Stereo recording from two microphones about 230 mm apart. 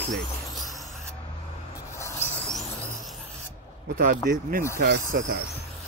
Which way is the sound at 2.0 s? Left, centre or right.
Centre.